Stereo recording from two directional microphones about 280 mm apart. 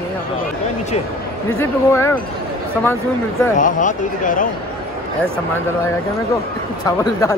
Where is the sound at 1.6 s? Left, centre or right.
Centre.